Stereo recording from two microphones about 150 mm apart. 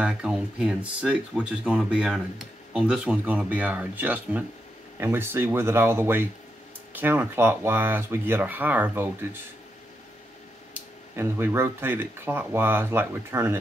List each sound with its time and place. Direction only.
0.0 s speech: 5° right (ahead or behind)
10.7 s speech: 15° right (ahead or behind)